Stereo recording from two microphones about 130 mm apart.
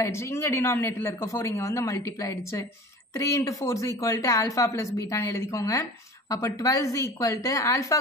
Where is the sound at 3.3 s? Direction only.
25° left (ahead or behind).